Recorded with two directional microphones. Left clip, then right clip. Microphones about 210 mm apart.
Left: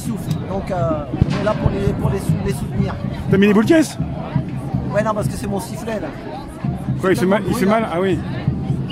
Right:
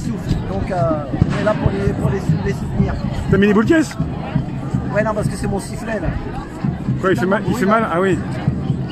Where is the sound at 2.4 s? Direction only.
15° left (ahead or behind).